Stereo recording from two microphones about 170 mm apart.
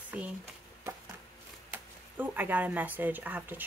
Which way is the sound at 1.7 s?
10° right (ahead or behind).